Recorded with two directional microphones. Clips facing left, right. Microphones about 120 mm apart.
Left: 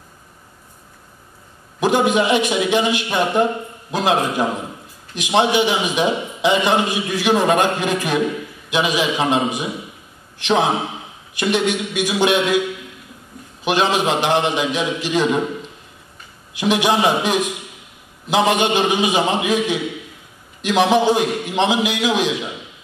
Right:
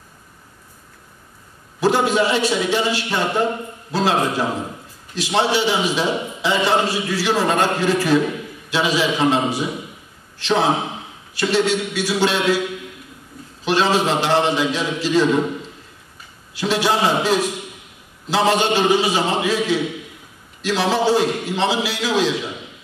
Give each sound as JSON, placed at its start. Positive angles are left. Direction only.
{"t": 1.8, "sound": "a man's voice", "side_deg": 15}
{"t": 13.7, "sound": "a man's voice", "side_deg": 15}
{"t": 16.5, "sound": "a man's voice", "side_deg": 15}